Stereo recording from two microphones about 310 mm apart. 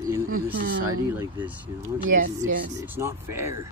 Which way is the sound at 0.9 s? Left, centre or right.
Centre.